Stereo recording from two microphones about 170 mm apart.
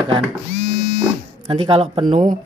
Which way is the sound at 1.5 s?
30° right (ahead or behind).